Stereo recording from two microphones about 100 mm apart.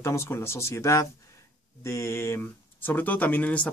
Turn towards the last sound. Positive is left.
turn(degrees=15)  # may be behind; listen again after turning